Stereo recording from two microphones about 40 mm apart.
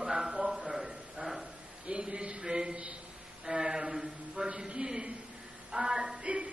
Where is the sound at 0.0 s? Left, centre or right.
Centre.